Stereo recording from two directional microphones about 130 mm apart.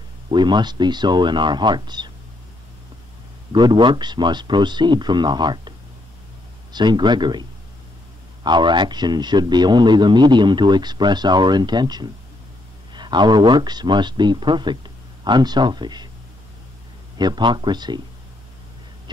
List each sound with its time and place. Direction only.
0.3 s a man's voice: 35° right (ahead or behind)
3.5 s a man's voice: 35° right (ahead or behind)
8.5 s a man's voice: 35° right (ahead or behind)
17.2 s a man's voice: 35° right (ahead or behind)